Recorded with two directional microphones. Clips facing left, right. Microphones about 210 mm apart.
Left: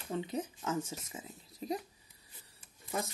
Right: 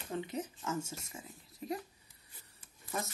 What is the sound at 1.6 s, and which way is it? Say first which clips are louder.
Speech: left 2 dB; 20° left (ahead or behind).